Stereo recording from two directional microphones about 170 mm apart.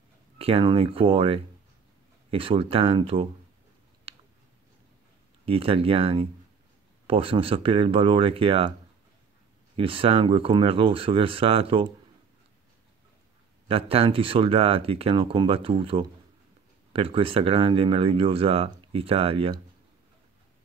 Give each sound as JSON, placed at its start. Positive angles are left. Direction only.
{"t": 0.4, "sound": "speech", "side_deg": -35}
{"t": 5.4, "sound": "speech", "side_deg": -35}
{"t": 9.8, "sound": "speech", "side_deg": -30}
{"t": 13.7, "sound": "speech", "side_deg": -35}